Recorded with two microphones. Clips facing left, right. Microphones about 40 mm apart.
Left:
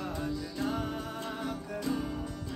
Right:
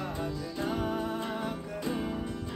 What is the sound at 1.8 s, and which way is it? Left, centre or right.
Music, right.